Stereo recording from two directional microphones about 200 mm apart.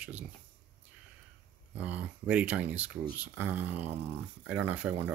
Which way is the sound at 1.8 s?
5° right (ahead or behind).